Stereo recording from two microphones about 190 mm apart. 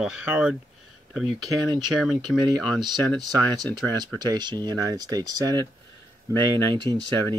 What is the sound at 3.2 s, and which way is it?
Speech, 20° right (ahead or behind).